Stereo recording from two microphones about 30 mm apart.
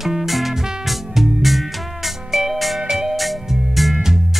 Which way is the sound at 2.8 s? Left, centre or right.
Centre.